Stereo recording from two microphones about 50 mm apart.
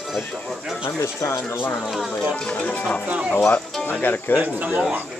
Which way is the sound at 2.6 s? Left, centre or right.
Left.